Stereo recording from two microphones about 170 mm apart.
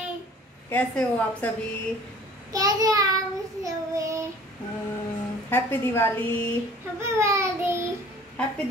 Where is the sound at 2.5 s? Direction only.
20° right (ahead or behind).